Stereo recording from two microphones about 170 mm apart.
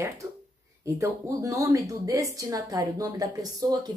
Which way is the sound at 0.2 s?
20° right (ahead or behind).